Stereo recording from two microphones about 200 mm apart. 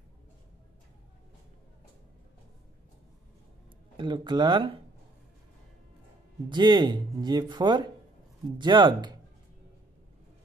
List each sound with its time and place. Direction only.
3.9 s speech: 25° right (ahead or behind)
6.5 s speech: 20° right (ahead or behind)